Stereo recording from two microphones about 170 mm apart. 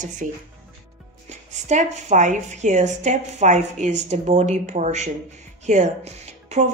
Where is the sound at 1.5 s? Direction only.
45° right (ahead or behind).